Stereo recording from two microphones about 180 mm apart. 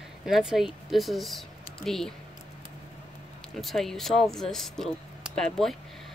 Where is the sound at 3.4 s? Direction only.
Centre (ahead or behind).